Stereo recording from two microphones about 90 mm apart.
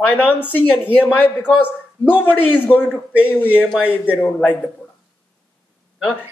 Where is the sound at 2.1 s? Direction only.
10° right (ahead or behind).